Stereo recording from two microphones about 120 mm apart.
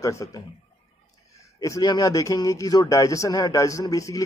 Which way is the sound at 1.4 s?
25° left (ahead or behind).